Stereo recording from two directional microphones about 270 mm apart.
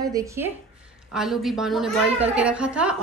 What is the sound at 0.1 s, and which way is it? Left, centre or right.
A woman's voice, centre.